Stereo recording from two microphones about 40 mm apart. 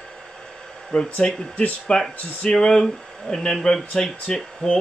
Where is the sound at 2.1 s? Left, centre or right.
Left.